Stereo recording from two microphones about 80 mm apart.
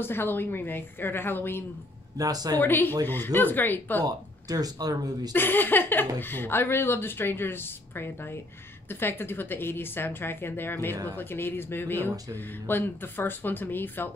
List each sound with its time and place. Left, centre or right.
0.0 s speech: left
2.1 s speech: right
2.6 s speech: left
4.0 s speech: right
5.3 s speech: left